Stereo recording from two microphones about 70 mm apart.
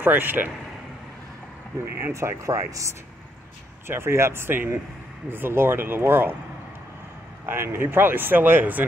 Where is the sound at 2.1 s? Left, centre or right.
Right.